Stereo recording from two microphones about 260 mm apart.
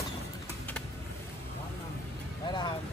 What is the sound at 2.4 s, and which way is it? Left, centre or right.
Vehicle, centre.